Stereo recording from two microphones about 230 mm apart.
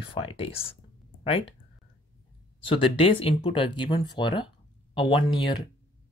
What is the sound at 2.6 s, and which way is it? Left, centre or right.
Speech, left.